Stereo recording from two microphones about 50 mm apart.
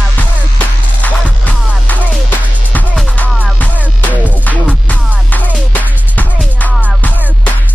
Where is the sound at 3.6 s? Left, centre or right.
Left.